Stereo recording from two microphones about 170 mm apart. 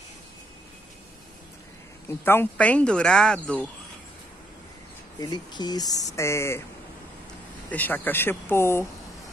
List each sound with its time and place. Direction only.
2.0 s speech: 15° left (ahead or behind)
5.2 s speech: 25° left (ahead or behind)
7.7 s speech: 10° left (ahead or behind)